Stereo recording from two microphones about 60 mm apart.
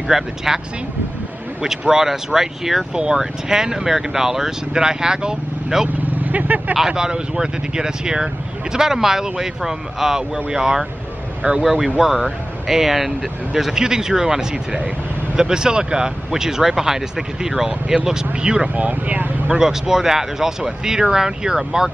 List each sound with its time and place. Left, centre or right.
0.1 s speech: centre
1.6 s speech: centre
6.2 s vehicle: right
6.7 s speech: centre
18.8 s speech: right
19.6 s speech: centre